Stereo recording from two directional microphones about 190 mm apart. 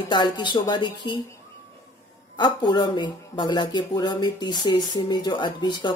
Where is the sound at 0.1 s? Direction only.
25° left (ahead or behind).